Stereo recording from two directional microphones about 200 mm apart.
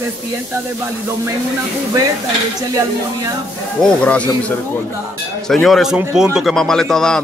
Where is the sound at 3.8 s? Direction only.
5° left (ahead or behind).